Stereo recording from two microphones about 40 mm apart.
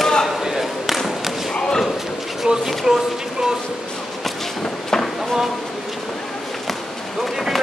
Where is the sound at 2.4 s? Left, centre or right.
Centre.